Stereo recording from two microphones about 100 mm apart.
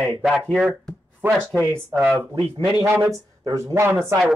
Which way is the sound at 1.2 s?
20° right (ahead or behind).